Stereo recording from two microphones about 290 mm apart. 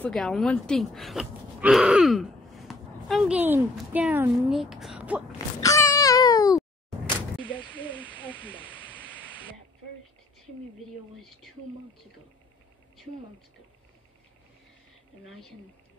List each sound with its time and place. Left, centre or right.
0.0 s speech: centre
5.6 s a sound: centre
8.2 s snake: centre
10.8 s speech: centre
15.2 s speech: centre